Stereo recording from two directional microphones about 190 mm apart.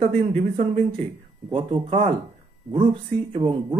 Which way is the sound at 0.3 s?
30° right (ahead or behind).